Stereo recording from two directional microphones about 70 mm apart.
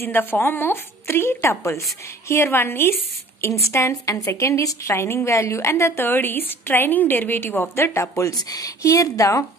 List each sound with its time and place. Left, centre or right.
0.0 s a woman's voice: left
8.5 s a woman's voice: left